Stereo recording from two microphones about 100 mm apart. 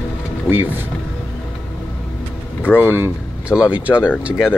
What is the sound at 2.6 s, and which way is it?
Speech, 20° left (ahead or behind).